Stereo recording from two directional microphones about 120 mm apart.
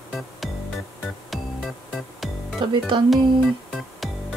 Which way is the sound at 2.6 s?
40° right (ahead or behind).